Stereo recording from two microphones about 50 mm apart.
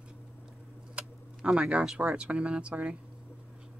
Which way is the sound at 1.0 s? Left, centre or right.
Right.